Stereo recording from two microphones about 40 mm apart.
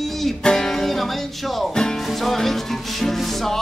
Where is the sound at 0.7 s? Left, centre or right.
Centre.